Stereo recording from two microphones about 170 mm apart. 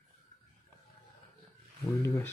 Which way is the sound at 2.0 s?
15° left (ahead or behind).